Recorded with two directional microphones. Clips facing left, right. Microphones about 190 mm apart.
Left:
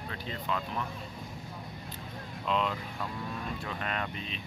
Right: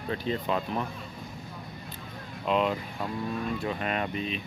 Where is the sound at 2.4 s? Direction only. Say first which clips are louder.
Right 5 dB; 15° right (ahead or behind).